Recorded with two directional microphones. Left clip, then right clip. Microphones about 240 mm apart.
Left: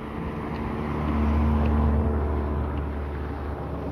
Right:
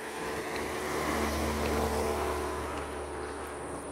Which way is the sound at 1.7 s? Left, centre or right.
Right.